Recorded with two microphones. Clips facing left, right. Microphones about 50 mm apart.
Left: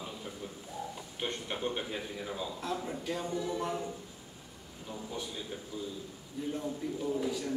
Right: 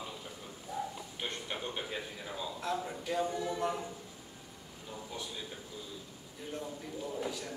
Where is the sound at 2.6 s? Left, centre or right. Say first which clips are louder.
Right 1 dB; centre.